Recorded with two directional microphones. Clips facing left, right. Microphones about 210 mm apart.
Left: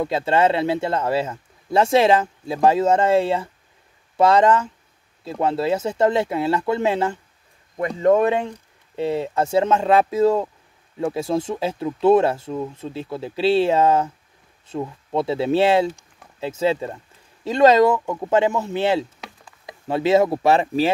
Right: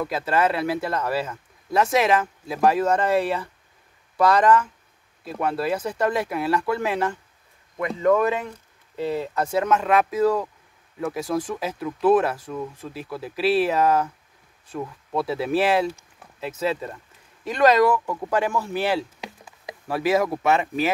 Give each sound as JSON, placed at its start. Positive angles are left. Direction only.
{"t": 0.0, "sound": "speech", "side_deg": 25}